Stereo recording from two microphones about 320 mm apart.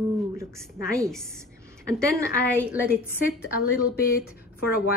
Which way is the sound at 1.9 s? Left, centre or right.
Centre.